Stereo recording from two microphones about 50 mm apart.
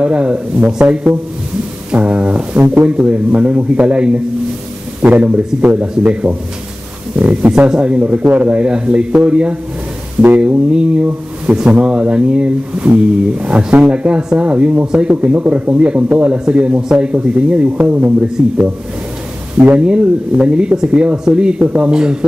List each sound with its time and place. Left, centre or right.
0.0 s speech: right
2.0 s brass instrument: right
2.7 s speech: right
11.5 s speech: right
11.8 s speech: right
19.8 s speech: centre